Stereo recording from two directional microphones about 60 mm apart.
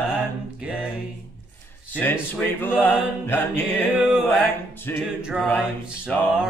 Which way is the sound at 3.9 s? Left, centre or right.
Centre.